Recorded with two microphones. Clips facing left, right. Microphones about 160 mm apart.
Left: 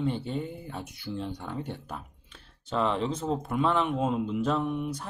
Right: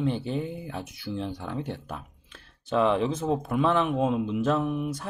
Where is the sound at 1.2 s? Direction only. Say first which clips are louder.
Right 3 dB; 90° right.